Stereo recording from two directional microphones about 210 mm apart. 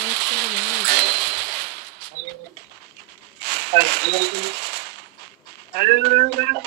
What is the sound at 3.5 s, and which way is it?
Speech, 50° right (ahead or behind).